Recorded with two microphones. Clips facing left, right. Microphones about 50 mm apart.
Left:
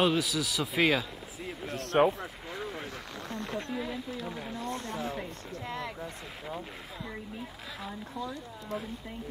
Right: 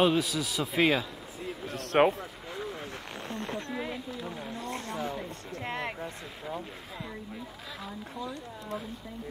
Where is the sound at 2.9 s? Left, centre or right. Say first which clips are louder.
Right 1 dB; right.